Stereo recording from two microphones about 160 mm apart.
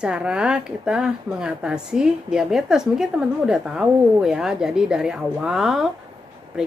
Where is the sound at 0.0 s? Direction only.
5° right (ahead or behind).